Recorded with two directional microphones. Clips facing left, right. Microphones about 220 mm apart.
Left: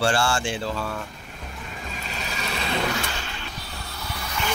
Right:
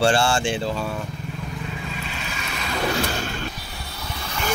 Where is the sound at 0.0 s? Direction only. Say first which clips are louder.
Right 4 dB; 25° right (ahead or behind).